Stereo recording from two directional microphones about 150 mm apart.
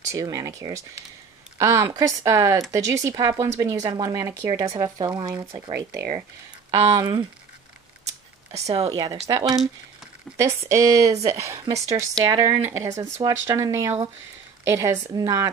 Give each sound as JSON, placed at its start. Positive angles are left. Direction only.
{"t": 0.1, "sound": "speech", "side_deg": -25}
{"t": 6.7, "sound": "speech", "side_deg": -20}
{"t": 8.5, "sound": "speech", "side_deg": -45}
{"t": 8.9, "sound": "speech", "side_deg": -25}
{"t": 10.7, "sound": "speech", "side_deg": -20}